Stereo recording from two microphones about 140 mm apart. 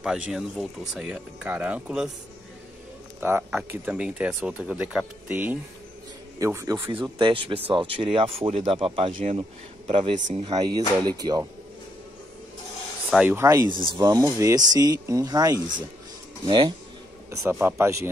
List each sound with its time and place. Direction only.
0.0 s speech: 5° right (ahead or behind)
3.2 s speech: 15° right (ahead or behind)
6.9 s speech: 35° right (ahead or behind)
13.1 s speech: 10° right (ahead or behind)
13.4 s speech: 20° right (ahead or behind)
13.7 s speech: 35° right (ahead or behind)
13.9 s speech: 25° right (ahead or behind)
17.3 s a man's voice: 20° right (ahead or behind)